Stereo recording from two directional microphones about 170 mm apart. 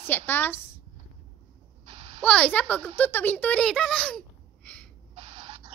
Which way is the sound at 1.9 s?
35° right (ahead or behind).